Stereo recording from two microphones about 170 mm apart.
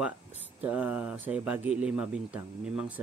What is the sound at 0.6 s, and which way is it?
Speech, 10° right (ahead or behind).